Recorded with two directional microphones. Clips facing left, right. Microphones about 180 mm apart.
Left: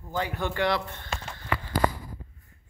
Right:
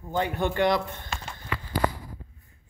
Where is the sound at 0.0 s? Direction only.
20° right (ahead or behind).